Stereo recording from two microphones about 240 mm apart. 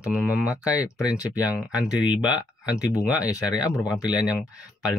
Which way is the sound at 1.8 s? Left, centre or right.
Centre.